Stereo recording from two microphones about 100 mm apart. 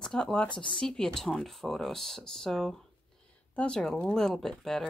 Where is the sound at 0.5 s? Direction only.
55° left (ahead or behind).